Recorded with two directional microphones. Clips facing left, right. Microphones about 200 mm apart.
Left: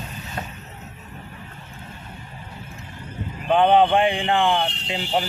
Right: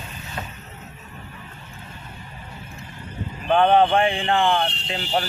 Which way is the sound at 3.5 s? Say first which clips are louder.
Even; 15° left (ahead or behind).